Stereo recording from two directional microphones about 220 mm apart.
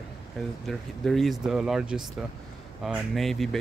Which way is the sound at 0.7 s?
Centre (ahead or behind).